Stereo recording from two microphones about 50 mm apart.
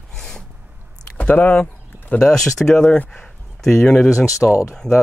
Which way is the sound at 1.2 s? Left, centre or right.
Left.